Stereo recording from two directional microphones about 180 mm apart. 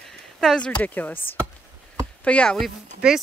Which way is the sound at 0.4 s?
5° left (ahead or behind).